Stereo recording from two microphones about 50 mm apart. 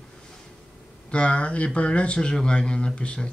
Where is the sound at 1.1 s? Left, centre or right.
Left.